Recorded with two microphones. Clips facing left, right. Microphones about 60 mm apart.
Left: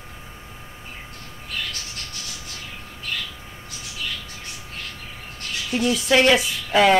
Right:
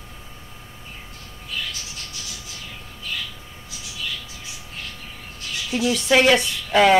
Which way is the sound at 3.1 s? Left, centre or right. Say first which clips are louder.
Left 1 dB; left.